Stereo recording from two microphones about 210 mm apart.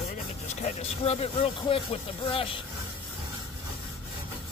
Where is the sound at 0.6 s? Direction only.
30° left (ahead or behind).